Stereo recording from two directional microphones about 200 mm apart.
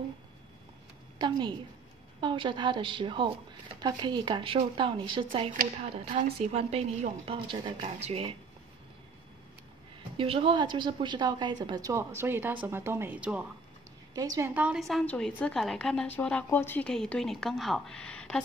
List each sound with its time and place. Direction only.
1.1 s a woman's voice: 25° right (ahead or behind)
10.1 s a woman's voice: 25° right (ahead or behind); by 13.5 s 5° right (ahead or behind)
14.1 s a woman's voice: 15° right (ahead or behind); by 18.4 s 5° left (ahead or behind)